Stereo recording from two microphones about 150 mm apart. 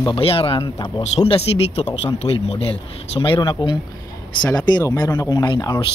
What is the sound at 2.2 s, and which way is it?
Speech, 40° left (ahead or behind).